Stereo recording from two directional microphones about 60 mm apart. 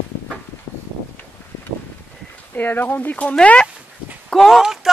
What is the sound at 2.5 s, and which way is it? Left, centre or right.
Speech, left.